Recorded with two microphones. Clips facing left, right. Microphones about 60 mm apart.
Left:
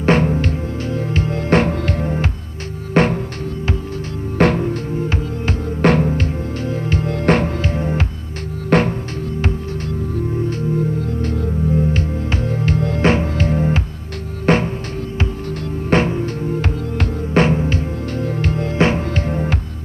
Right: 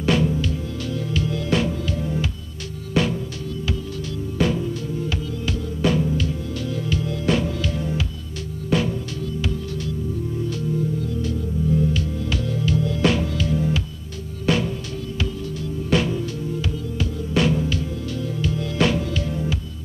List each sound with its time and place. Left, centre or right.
0.0 s music: left
4.4 s music: left
8.6 s music: left
10.8 s music: left
15.9 s music: left